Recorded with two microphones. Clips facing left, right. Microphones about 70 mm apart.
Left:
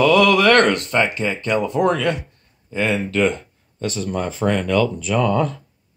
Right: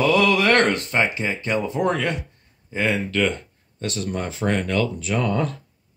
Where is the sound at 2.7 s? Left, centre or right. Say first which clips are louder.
Left 2 dB; left.